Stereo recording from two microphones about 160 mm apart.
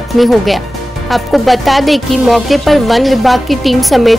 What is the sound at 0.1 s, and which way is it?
A man's voice, centre (ahead or behind).